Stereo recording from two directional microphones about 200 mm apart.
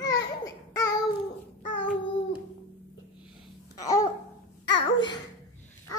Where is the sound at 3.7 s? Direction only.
15° left (ahead or behind).